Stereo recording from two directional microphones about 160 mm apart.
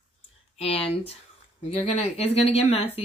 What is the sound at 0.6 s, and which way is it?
Speech, 40° left (ahead or behind).